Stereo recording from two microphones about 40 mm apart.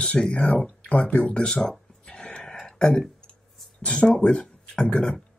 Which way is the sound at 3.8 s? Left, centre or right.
Left.